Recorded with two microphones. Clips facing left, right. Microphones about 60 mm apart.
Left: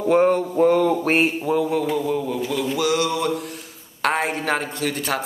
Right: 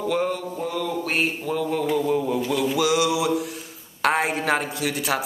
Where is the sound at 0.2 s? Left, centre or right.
Left.